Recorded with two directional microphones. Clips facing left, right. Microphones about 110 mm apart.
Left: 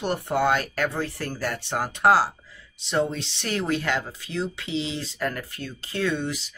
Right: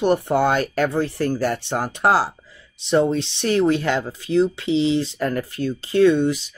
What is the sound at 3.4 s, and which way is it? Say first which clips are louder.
Speech: right 8 dB; 25° right (ahead or behind).